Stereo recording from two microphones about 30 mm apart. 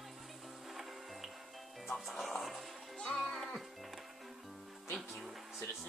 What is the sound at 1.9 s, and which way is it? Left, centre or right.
Speech, centre.